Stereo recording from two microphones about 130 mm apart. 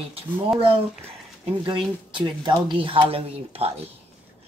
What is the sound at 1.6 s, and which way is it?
Speech, 40° right (ahead or behind).